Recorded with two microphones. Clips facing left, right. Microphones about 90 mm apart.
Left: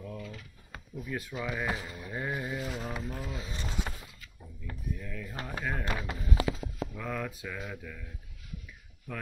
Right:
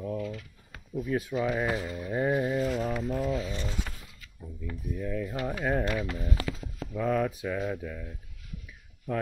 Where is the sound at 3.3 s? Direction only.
15° left (ahead or behind).